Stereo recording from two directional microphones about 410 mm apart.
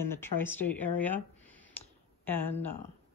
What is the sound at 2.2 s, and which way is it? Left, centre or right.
Speech, centre.